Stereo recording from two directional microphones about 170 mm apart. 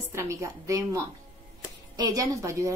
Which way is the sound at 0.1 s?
15° right (ahead or behind).